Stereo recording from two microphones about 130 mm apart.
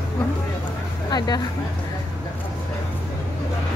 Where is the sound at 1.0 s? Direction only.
30° left (ahead or behind).